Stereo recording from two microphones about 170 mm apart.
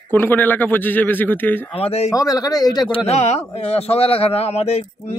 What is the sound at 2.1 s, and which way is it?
Speech, 20° left (ahead or behind).